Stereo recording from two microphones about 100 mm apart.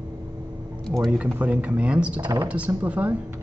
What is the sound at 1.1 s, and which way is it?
Speech, 15° right (ahead or behind).